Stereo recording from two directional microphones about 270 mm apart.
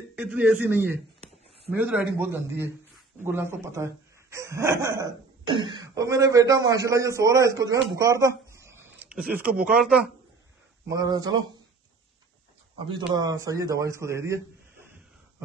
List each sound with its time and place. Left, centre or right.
0.1 s a man's voice: centre
10.9 s speech: centre
13.1 s speech: centre